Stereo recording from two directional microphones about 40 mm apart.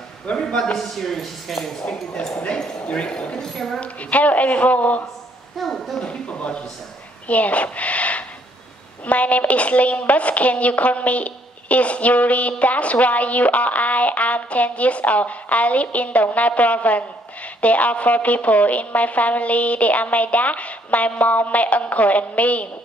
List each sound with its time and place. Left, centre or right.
0.3 s a woman's voice: left
0.7 s speech: centre
2.4 s a woman's voice: left; by 3.8 s centre
3.8 s a woman's voice: left
5.6 s speech: centre
6.0 s a woman's voice: left